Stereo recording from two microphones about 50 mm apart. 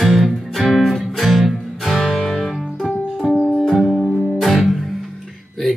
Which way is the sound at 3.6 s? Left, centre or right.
Centre.